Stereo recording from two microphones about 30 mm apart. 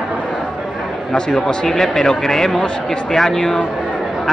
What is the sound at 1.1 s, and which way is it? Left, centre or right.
Speech, left.